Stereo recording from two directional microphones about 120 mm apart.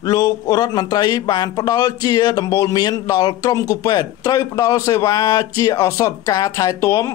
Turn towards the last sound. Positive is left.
turn(degrees=25)  # may be behind; listen again after turning